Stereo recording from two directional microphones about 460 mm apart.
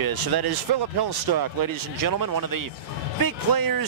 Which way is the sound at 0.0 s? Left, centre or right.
Right.